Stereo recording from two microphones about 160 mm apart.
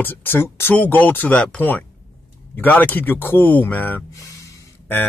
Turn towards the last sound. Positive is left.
turn(degrees=15)  # may be behind; listen again after turning